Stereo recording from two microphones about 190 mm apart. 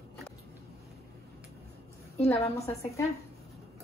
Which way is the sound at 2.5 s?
15° left (ahead or behind).